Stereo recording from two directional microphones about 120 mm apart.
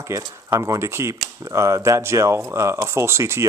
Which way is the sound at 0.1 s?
25° right (ahead or behind).